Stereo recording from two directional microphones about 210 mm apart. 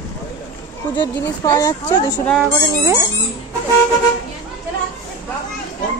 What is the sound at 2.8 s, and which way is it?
Speech, 10° right (ahead or behind).